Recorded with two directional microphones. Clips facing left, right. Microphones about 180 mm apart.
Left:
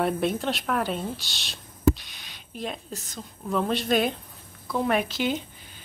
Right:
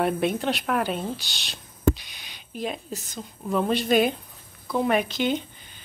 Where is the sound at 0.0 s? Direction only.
Centre (ahead or behind).